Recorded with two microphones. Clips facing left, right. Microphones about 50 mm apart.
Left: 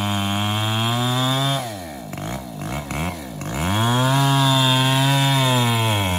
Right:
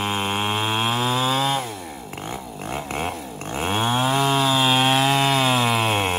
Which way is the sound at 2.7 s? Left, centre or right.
Right.